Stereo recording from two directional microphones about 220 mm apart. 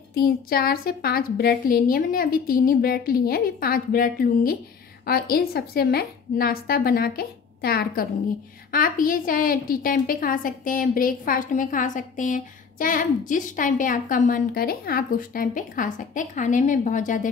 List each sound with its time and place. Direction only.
0.1 s a woman's voice: 45° left (ahead or behind)